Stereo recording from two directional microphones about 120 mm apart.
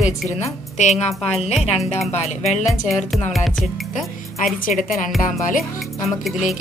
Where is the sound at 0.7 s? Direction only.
65° left (ahead or behind).